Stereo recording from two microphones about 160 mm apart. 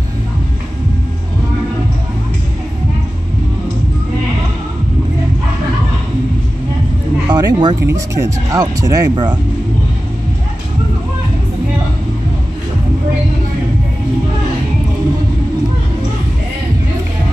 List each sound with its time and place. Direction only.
7.2 s speech: 25° right (ahead or behind)